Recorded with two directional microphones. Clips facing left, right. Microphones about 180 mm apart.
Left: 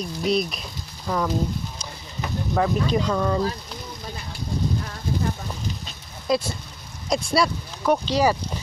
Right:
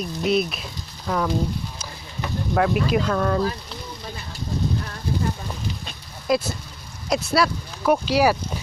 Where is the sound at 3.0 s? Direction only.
10° left (ahead or behind).